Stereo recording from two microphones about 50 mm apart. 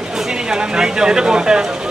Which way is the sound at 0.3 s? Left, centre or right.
Centre.